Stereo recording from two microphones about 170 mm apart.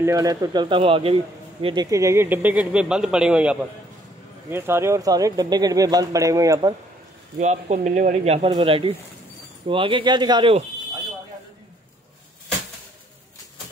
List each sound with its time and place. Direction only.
0.0 s speech: 20° right (ahead or behind)
1.9 s a man's voice: 20° right (ahead or behind)
7.3 s speech: 45° right (ahead or behind); by 10.6 s 30° right (ahead or behind)